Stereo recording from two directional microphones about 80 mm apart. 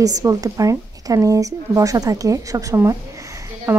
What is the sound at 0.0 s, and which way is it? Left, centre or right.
A woman's voice, right.